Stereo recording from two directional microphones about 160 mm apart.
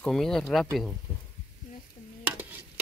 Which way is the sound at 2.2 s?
10° right (ahead or behind).